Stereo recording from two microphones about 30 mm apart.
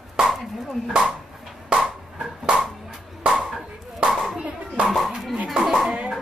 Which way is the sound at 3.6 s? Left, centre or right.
Right.